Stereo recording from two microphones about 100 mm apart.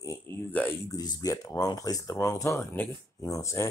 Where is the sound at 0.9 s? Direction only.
40° left (ahead or behind).